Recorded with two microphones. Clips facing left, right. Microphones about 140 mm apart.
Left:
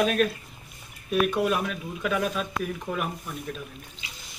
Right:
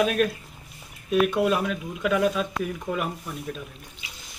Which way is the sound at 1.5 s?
5° left (ahead or behind).